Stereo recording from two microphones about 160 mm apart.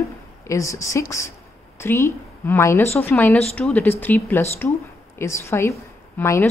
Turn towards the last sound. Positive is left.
turn(degrees=15)  # may be behind; listen again after turning